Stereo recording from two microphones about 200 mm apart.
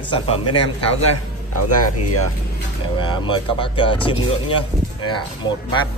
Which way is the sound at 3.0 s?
25° left (ahead or behind).